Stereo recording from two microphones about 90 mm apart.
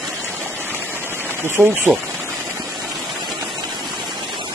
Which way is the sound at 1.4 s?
25° right (ahead or behind).